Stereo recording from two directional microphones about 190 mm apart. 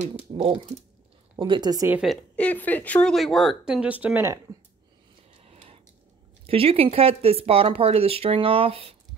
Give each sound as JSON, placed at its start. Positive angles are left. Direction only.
{"t": 0.4, "sound": "a woman's voice", "side_deg": -30}
{"t": 1.9, "sound": "speech", "side_deg": -5}
{"t": 2.3, "sound": "speech", "side_deg": 10}
{"t": 5.4, "sound": "a sound", "side_deg": -30}
{"t": 6.4, "sound": "speech", "side_deg": -30}